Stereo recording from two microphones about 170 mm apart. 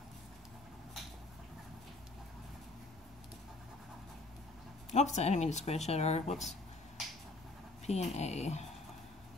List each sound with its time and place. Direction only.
4.9 s speech: 40° left (ahead or behind)
7.8 s speech: 40° left (ahead or behind)